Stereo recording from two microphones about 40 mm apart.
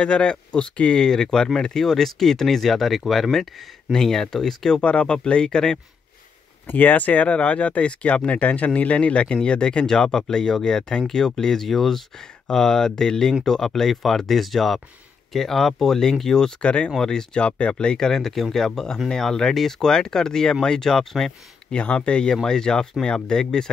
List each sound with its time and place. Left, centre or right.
0.0 s speech: left
1.0 s speech: centre
4.8 s speech: left
6.7 s speech: left
17.0 s speech: centre
21.6 s speech: left
22.3 s speech: centre